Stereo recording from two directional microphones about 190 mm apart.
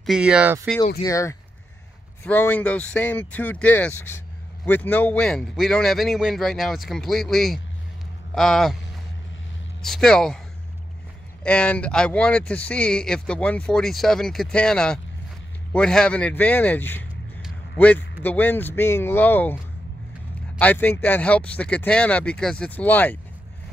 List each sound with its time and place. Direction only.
0.0 s speech: 5° right (ahead or behind)
1.0 s speech: 15° left (ahead or behind); by 8.7 s centre (ahead or behind)
9.8 s speech: centre (ahead or behind)
11.4 s speech: 5° left (ahead or behind)